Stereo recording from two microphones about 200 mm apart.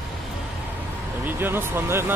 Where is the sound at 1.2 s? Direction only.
10° right (ahead or behind).